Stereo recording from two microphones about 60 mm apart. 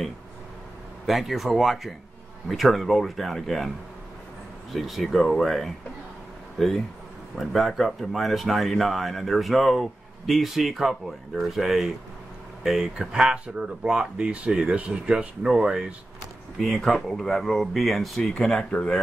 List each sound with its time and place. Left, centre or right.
1.0 s speech: centre
4.7 s speech: centre
16.5 s speech: centre
18.2 s speech: centre